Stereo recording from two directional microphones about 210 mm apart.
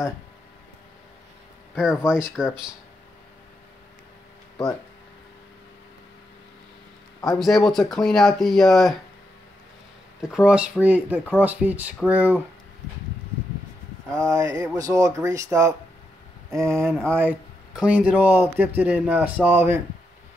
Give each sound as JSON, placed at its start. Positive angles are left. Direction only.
{"t": 2.0, "sound": "speech", "side_deg": -5}
{"t": 7.3, "sound": "speech", "side_deg": 0}
{"t": 10.2, "sound": "speech", "side_deg": -5}
{"t": 14.1, "sound": "speech", "side_deg": -15}
{"t": 16.8, "sound": "speech", "side_deg": 5}